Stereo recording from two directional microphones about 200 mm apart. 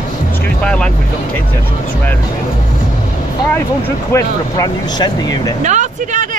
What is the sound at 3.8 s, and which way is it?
Speech, 15° left (ahead or behind).